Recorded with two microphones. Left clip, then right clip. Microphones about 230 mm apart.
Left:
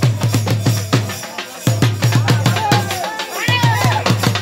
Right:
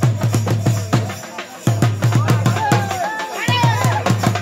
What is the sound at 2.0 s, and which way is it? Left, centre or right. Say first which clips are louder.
Music: left 2 dB; left.